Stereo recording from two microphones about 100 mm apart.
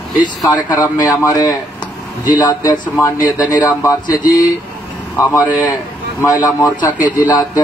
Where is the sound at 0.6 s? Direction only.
35° left (ahead or behind).